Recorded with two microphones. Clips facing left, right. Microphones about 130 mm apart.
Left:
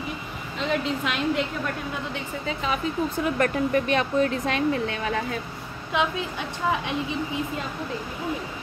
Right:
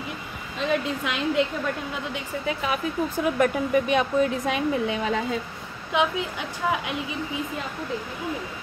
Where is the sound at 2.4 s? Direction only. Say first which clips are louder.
Even; 10° right (ahead or behind).